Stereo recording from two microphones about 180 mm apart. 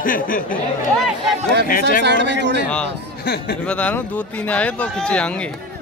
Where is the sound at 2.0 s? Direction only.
75° right (ahead or behind).